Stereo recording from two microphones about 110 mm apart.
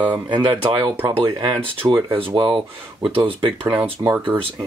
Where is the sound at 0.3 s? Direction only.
50° right (ahead or behind).